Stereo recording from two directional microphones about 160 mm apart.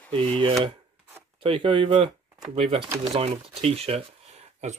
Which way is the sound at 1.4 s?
30° right (ahead or behind).